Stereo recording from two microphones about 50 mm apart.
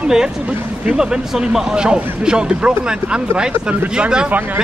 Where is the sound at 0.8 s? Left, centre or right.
Centre.